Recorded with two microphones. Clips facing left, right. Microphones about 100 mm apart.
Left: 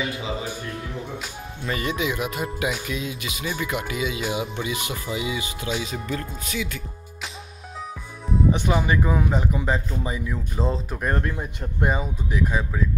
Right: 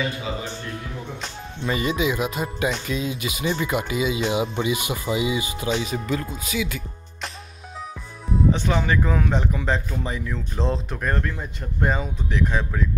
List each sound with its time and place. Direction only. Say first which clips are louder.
0.0 s speech: even; 15° left (ahead or behind); by 2.0 s 5° right (ahead or behind)
2.0 s speech: right 2 dB; 25° right (ahead or behind)
2.4 s speech: right 2 dB; 5° left (ahead or behind)
3.4 s speech: right 3 dB; 20° right (ahead or behind)
5.9 s speech: right 3 dB; centre (ahead or behind)
8.5 s speech: even; 15° left (ahead or behind)
11.0 s speech: left 1 dB; 20° left (ahead or behind)